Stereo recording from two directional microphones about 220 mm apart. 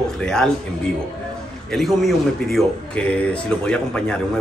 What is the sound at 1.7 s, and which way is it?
A man's voice, centre (ahead or behind).